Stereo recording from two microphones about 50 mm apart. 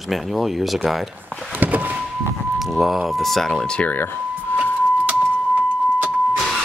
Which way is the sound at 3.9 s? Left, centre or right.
Left.